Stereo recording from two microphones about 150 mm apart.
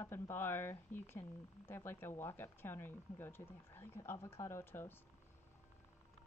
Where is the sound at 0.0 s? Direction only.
15° left (ahead or behind).